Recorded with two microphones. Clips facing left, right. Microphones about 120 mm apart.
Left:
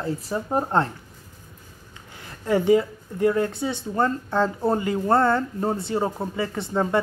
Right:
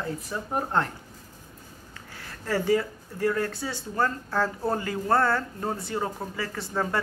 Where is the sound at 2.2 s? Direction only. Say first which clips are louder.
Left 6 dB; 20° left (ahead or behind).